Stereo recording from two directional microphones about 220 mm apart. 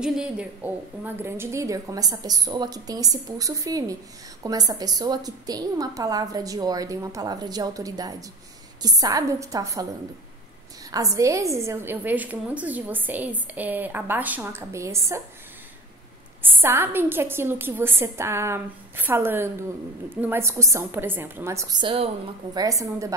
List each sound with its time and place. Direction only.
0.0 s a woman's voice: 5° right (ahead or behind)
10.9 s a woman's voice: 15° right (ahead or behind)
16.4 s a woman's voice: 10° right (ahead or behind)